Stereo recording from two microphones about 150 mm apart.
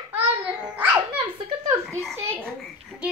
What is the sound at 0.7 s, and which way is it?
Music, 10° right (ahead or behind).